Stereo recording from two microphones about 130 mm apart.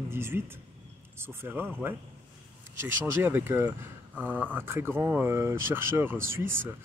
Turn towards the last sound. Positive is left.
turn(degrees=-20)  # may be behind; listen again after turning